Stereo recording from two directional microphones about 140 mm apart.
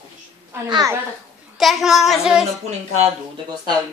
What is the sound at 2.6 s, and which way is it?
Speech, 50° right (ahead or behind).